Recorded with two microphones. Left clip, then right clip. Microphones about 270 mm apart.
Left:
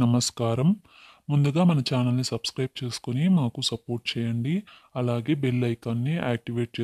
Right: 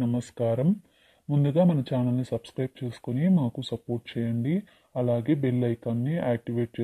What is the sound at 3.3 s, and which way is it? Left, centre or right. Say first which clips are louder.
Speech: left 3 dB; left.